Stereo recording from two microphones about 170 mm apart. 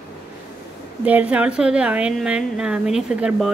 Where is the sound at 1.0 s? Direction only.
10° right (ahead or behind).